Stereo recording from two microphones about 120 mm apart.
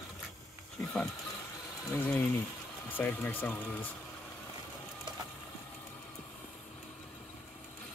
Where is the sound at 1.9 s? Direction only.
25° left (ahead or behind).